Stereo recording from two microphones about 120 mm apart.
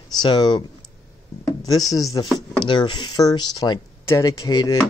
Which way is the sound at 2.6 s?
40° left (ahead or behind).